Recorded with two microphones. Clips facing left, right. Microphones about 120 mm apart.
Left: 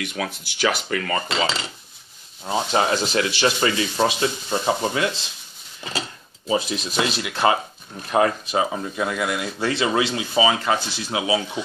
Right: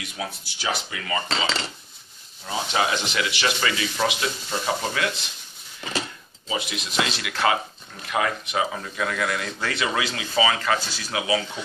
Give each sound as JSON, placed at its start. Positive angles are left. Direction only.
{"t": 0.0, "sound": "speech", "side_deg": 65}
{"t": 2.4, "sound": "speech", "side_deg": 35}
{"t": 6.4, "sound": "speech", "side_deg": 35}